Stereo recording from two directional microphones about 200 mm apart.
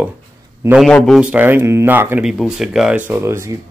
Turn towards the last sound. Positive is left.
turn(degrees=-15)  # may be behind; listen again after turning